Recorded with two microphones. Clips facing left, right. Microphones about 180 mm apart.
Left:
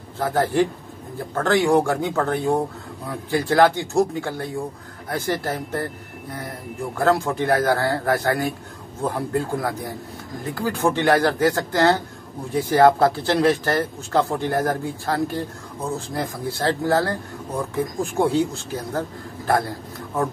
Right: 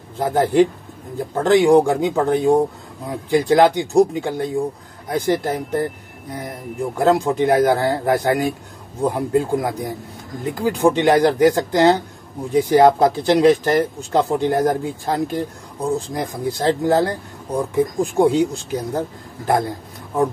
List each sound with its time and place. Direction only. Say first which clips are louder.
0.2 s a man's voice: right 4 dB; 20° right (ahead or behind)
7.0 s speech: right 4 dB; 20° right (ahead or behind)